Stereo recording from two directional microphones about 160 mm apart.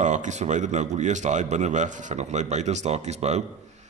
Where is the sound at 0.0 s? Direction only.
50° right (ahead or behind).